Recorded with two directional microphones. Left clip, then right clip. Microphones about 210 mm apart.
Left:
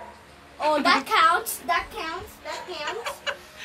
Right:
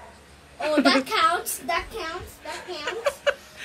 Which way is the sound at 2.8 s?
5° left (ahead or behind).